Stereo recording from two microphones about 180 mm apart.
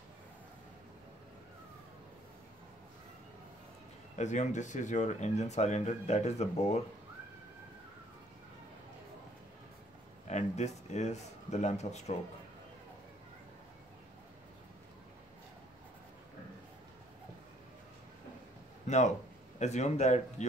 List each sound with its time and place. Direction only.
4.2 s speech: 40° left (ahead or behind)
10.2 s speech: 40° left (ahead or behind)
18.9 s speech: 40° left (ahead or behind)